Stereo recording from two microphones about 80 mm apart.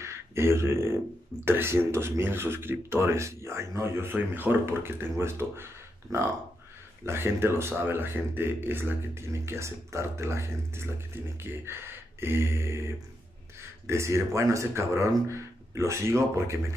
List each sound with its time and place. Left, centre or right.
0.0 s speech: right
7.1 s speech: right